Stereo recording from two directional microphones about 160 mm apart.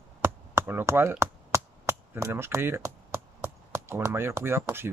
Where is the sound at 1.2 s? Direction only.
20° right (ahead or behind).